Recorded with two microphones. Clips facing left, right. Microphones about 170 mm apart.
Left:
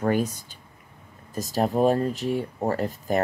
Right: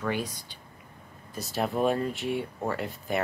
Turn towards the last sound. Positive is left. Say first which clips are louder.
# left 5 dB
turn(degrees=40)  # may be behind; listen again after turning